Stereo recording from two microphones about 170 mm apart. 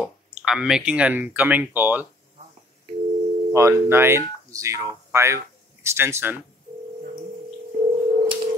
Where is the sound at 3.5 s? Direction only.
15° right (ahead or behind).